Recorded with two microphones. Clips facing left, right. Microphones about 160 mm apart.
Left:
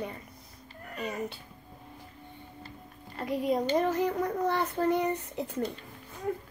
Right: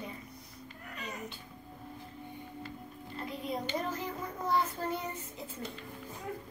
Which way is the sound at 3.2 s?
65° left (ahead or behind).